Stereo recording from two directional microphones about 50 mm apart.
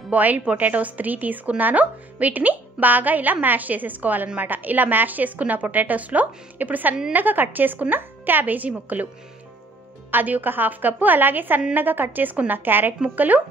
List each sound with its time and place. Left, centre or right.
0.1 s speech: right
10.1 s speech: right